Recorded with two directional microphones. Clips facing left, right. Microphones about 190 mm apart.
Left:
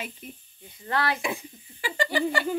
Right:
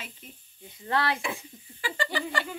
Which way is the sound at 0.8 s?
25° right (ahead or behind).